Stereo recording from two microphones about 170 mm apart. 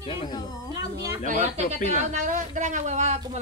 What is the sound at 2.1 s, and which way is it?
Speech, 50° right (ahead or behind).